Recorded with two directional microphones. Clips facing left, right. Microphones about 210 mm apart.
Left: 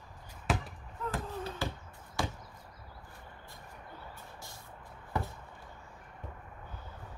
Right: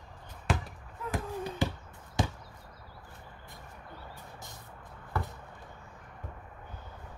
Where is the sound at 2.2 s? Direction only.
20° right (ahead or behind).